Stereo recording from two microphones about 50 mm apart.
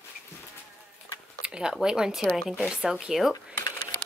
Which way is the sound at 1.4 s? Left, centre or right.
Centre.